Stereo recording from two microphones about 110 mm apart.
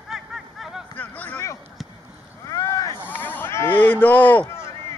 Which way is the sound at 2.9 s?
15° left (ahead or behind).